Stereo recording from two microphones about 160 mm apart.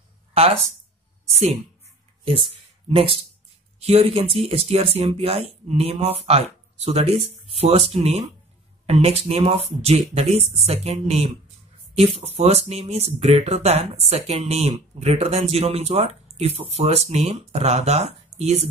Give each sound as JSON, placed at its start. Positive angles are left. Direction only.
{"t": 2.9, "sound": "speech", "side_deg": -35}